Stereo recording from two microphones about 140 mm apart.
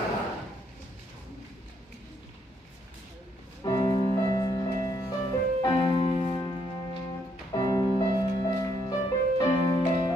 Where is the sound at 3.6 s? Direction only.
30° left (ahead or behind).